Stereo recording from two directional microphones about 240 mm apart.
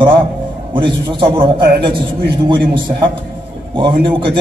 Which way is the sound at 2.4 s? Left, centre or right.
Centre.